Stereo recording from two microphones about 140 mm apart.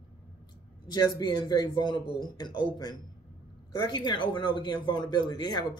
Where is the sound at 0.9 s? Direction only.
30° left (ahead or behind).